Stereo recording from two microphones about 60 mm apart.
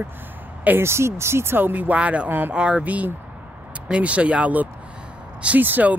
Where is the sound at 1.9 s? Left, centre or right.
Right.